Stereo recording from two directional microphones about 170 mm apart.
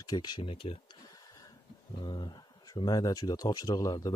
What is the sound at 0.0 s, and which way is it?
Speech, 25° left (ahead or behind).